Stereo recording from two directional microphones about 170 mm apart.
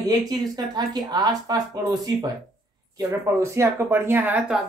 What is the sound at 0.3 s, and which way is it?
Speech, 25° right (ahead or behind).